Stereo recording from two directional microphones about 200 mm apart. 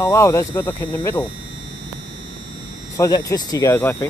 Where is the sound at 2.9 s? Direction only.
15° left (ahead or behind).